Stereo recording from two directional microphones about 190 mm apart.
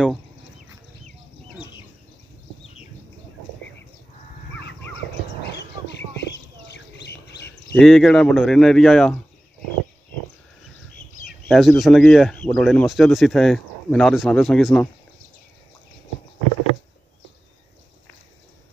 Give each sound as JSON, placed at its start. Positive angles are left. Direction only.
{"t": 2.6, "sound": "bird", "side_deg": 30}
{"t": 5.4, "sound": "a sound", "side_deg": 65}
{"t": 7.7, "sound": "speech", "side_deg": 0}
{"t": 11.4, "sound": "speech", "side_deg": 0}